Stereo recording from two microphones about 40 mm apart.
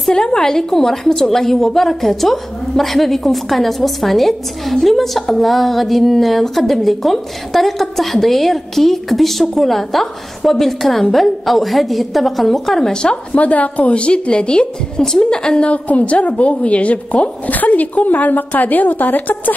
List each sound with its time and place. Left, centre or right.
0.1 s a woman's voice: centre
12.9 s a woman's voice: centre
13.3 s a woman's voice: left
15.7 s speech: left